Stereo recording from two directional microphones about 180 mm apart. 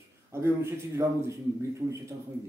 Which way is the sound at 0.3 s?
15° right (ahead or behind).